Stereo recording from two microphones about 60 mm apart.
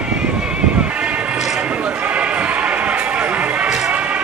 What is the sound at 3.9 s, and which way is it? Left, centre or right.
Music, right.